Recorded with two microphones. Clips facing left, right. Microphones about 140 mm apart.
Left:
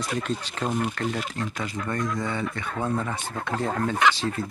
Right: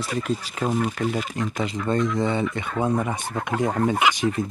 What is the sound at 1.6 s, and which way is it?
Speech, 20° right (ahead or behind).